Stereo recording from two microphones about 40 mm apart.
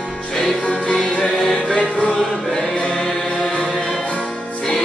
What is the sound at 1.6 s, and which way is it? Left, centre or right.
Music, left.